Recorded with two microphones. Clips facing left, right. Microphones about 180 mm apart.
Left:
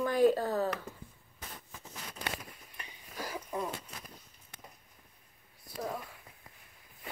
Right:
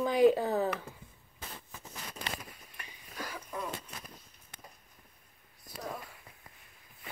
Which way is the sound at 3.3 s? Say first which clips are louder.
Left 4 dB; 25° left (ahead or behind).